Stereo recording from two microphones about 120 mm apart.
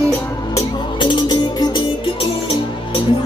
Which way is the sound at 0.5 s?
40° left (ahead or behind).